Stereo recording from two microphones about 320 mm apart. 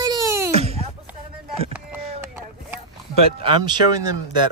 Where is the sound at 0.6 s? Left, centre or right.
Centre.